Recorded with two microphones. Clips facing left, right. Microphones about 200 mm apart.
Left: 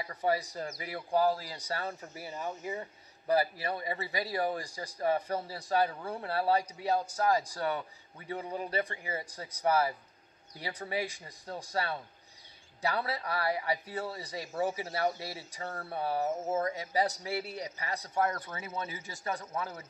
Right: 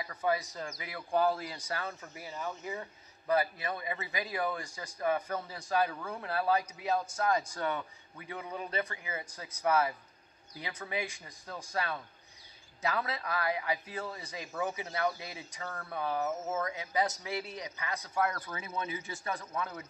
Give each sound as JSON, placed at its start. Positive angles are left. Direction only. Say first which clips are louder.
{"t": 0.0, "sound": "speech", "louder": "left 1 dB", "side_deg": 35}
{"t": 18.3, "sound": "speech", "louder": "left 1 dB", "side_deg": 25}
{"t": 18.8, "sound": "speech", "louder": "right 4 dB", "side_deg": 40}
{"t": 19.4, "sound": "speech", "louder": "even", "side_deg": 25}